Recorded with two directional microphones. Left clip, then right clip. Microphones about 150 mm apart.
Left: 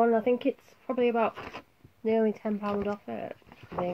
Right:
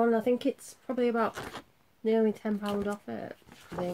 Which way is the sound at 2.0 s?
30° right (ahead or behind).